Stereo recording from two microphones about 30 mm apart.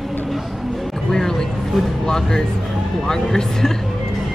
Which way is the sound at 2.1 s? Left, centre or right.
Centre.